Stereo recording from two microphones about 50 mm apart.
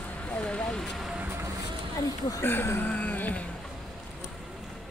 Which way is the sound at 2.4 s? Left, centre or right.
Left.